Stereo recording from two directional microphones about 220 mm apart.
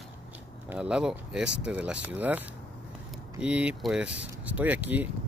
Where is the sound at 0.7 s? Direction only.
5° right (ahead or behind).